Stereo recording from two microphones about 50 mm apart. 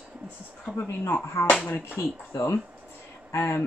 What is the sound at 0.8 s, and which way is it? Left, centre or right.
Speech, left.